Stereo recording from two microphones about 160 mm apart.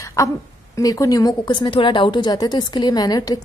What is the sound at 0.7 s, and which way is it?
A woman's voice, 20° left (ahead or behind).